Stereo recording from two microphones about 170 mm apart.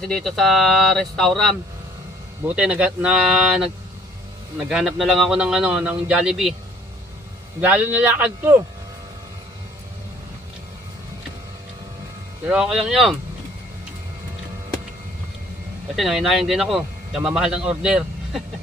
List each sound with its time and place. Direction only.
0.0 s a man's voice: centre (ahead or behind)
7.6 s speech: 10° right (ahead or behind)
12.4 s a man's voice: 5° right (ahead or behind)
16.0 s a man's voice: centre (ahead or behind)